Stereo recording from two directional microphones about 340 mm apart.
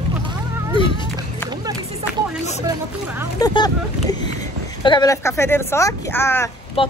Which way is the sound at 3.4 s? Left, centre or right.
Centre.